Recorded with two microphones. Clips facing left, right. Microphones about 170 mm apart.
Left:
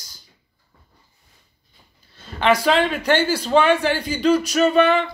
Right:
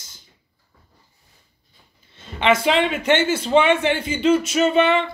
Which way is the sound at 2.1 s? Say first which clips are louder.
Even; 20° right (ahead or behind).